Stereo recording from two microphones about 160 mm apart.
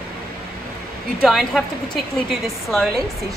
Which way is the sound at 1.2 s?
Centre (ahead or behind).